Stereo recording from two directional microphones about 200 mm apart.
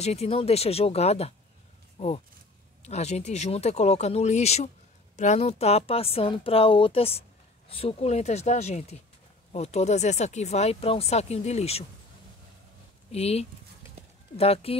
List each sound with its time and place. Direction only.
0.0 s speech: 30° left (ahead or behind)
13.1 s speech: 30° left (ahead or behind)